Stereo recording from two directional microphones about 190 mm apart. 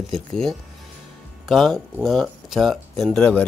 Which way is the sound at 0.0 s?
Centre (ahead or behind).